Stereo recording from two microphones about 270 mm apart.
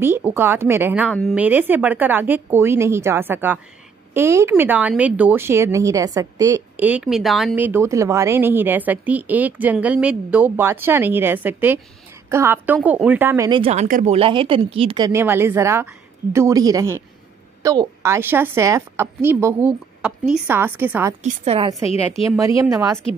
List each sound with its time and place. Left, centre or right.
0.0 s speech: centre
21.2 s a woman's voice: right